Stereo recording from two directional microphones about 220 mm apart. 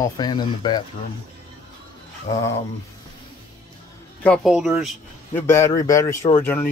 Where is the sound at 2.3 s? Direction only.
15° left (ahead or behind).